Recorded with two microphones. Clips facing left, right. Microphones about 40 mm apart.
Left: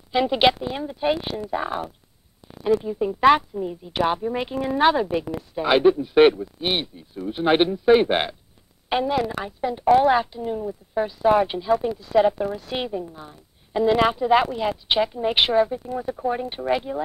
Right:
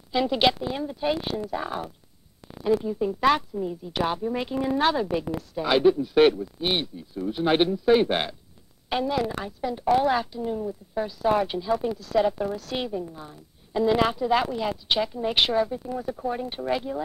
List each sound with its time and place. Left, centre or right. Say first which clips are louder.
0.1 s a woman's voice: left 3 dB; centre